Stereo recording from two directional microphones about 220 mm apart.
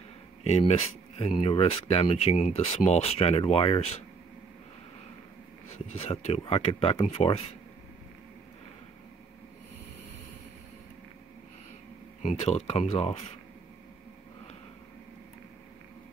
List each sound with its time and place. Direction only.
0.4 s speech: 30° left (ahead or behind)
5.9 s speech: 30° left (ahead or behind)
12.2 s speech: 30° left (ahead or behind)